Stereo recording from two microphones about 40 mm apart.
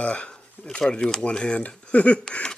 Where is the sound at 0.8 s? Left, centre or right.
Centre; by 2.2 s left.